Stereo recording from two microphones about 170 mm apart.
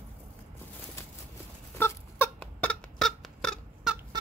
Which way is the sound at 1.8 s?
15° left (ahead or behind).